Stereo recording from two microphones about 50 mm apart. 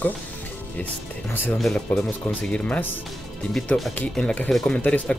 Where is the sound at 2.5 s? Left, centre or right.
Left.